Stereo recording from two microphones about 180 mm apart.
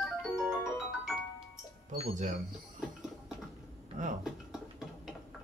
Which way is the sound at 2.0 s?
45° right (ahead or behind).